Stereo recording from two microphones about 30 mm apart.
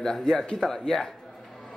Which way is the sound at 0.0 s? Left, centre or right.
Centre.